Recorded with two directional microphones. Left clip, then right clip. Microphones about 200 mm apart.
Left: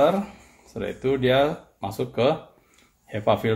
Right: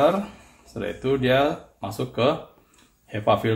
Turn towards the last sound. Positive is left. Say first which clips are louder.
# right 1 dB
turn(degrees=35)  # may be behind; listen again after turning